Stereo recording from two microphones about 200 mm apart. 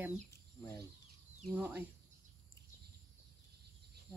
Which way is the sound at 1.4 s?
10° right (ahead or behind).